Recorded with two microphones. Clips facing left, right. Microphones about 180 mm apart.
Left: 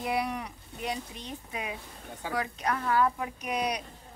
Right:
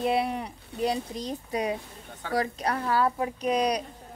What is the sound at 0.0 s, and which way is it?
A woman's voice, 25° right (ahead or behind).